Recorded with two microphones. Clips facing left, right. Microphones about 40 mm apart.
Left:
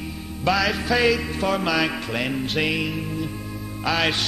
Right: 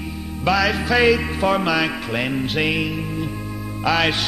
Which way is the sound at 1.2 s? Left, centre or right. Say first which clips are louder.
Right 4 dB; centre.